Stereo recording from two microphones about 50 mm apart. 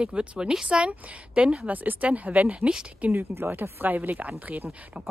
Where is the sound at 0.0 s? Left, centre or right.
Right.